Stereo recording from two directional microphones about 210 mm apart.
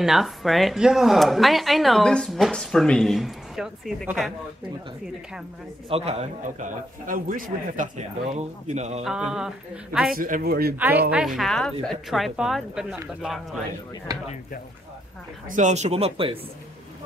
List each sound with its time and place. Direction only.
0.0 s speech: centre (ahead or behind)
5.9 s a man's voice: 30° right (ahead or behind)
9.0 s speech: 5° right (ahead or behind)
10.1 s speech: 40° right (ahead or behind)
11.1 s speech: 5° right (ahead or behind)
14.1 s speech: 15° right (ahead or behind)
15.4 s a man's voice: 35° right (ahead or behind)